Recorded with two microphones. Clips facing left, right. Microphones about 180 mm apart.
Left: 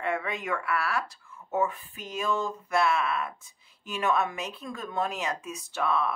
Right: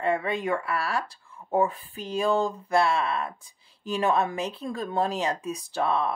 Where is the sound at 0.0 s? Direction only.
30° right (ahead or behind).